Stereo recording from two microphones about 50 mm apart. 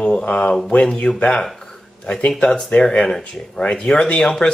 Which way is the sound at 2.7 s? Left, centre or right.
Left.